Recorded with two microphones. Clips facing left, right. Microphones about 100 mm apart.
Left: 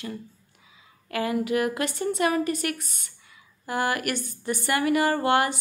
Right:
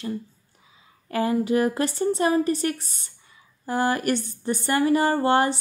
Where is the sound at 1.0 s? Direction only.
30° right (ahead or behind).